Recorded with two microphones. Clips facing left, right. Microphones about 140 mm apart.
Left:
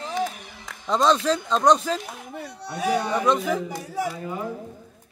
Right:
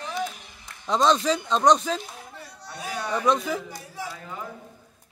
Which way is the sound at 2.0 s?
65° left (ahead or behind).